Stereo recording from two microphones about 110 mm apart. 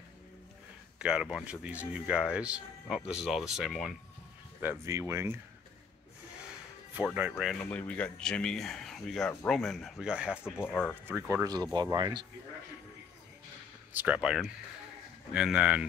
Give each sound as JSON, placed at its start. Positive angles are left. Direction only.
{"t": 0.9, "sound": "speech", "side_deg": -5}
{"t": 4.6, "sound": "speech", "side_deg": -25}
{"t": 7.7, "sound": "speech", "side_deg": 15}
{"t": 10.4, "sound": "speech", "side_deg": 20}
{"t": 11.1, "sound": "speech", "side_deg": -20}
{"t": 11.4, "sound": "speech", "side_deg": -40}
{"t": 13.9, "sound": "speech", "side_deg": -10}